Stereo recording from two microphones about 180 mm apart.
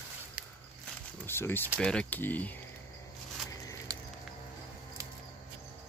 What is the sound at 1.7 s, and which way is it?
Speech, 5° left (ahead or behind).